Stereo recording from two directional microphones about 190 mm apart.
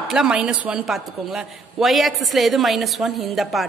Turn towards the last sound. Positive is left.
turn(degrees=0)  # may be behind; listen again after turning